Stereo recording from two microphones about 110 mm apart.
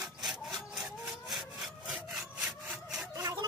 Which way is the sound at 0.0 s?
5° right (ahead or behind).